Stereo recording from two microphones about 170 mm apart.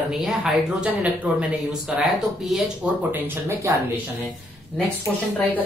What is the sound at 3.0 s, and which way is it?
Speech, 10° right (ahead or behind).